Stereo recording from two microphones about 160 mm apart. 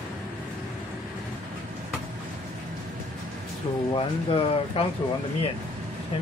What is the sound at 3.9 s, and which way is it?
Speech, 35° left (ahead or behind).